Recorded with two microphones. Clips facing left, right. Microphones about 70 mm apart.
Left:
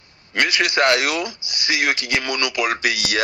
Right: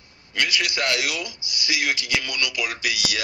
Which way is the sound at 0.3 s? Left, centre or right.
Left.